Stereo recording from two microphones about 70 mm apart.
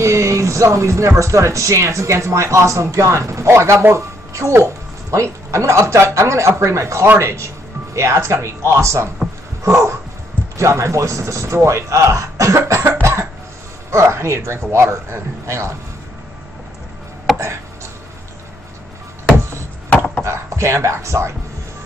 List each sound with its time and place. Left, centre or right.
0.0 s speech: right
9.6 s dog: right
10.6 s speech: right
13.0 s cough: right
13.8 s speech: right
20.2 s speech: right